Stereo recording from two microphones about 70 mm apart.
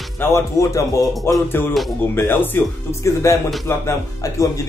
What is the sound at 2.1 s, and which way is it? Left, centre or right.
Speech, left.